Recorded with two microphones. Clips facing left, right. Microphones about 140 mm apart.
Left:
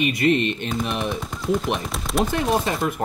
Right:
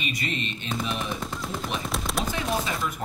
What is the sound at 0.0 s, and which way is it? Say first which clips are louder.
Speech: left 12 dB; 55° left (ahead or behind).